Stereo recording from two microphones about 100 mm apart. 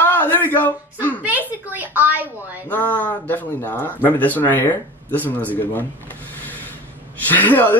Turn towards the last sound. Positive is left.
turn(degrees=20)  # may be behind; listen again after turning